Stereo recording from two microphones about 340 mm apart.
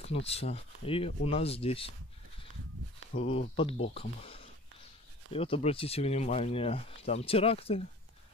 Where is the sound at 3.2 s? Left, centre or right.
Centre.